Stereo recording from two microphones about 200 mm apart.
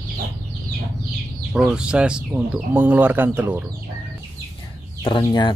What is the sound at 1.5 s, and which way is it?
Speech, 5° right (ahead or behind).